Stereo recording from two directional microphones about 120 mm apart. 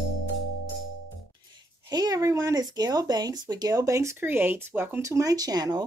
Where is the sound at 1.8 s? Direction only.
35° right (ahead or behind).